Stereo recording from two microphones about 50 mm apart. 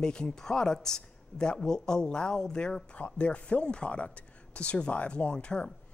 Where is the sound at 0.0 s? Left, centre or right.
Centre.